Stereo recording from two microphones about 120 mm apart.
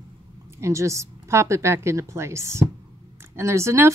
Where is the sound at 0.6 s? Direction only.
25° right (ahead or behind).